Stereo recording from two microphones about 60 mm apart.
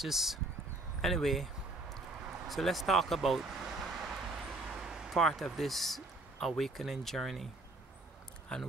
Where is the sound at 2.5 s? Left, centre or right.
Centre.